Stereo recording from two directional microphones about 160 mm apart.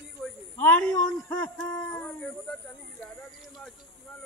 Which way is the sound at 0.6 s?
10° left (ahead or behind).